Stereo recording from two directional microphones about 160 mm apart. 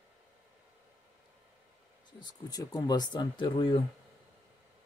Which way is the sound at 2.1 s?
25° left (ahead or behind).